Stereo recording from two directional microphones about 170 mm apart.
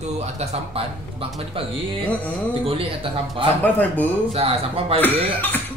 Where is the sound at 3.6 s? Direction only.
10° left (ahead or behind).